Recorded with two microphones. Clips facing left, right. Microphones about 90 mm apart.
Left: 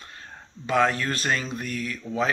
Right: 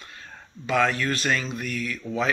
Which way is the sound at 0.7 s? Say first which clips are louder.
Even; 30° left (ahead or behind).